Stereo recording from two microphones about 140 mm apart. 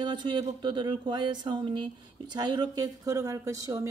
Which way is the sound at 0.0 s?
35° right (ahead or behind).